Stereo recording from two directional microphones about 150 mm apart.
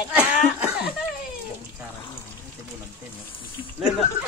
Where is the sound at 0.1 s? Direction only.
10° right (ahead or behind).